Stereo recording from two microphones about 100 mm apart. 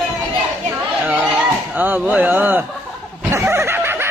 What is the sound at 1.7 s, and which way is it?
Speech, 20° right (ahead or behind).